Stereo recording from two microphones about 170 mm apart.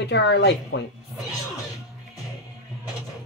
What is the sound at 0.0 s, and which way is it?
Speech, 90° left.